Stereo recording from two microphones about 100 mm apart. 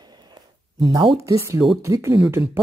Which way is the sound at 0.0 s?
45° right (ahead or behind).